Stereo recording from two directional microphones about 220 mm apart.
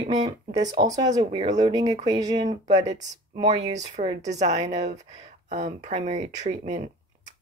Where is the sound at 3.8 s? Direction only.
30° right (ahead or behind).